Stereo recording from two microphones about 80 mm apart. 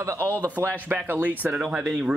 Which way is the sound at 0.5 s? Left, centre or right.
Right.